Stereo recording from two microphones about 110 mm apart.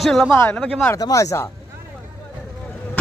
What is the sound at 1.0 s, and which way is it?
Speech, 30° left (ahead or behind).